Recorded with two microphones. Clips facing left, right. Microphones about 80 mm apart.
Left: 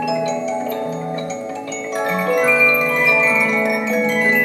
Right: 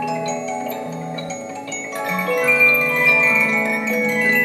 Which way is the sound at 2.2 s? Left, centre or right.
Centre.